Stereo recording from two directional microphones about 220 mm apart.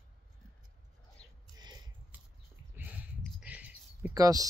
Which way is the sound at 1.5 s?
20° right (ahead or behind).